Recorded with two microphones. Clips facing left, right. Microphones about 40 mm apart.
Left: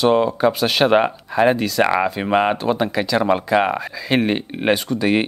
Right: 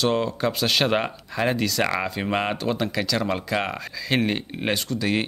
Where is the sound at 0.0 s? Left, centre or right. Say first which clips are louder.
Left 7 dB; centre.